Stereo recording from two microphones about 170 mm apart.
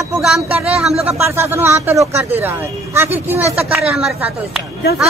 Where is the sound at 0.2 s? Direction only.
5° right (ahead or behind).